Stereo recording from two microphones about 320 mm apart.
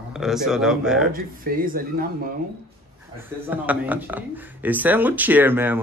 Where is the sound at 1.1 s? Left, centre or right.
Right.